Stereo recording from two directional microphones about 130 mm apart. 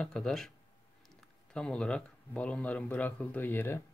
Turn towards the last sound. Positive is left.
turn(degrees=15)  # may be behind; listen again after turning